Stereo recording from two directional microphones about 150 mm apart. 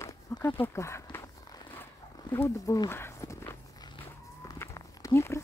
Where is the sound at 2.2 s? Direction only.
20° left (ahead or behind).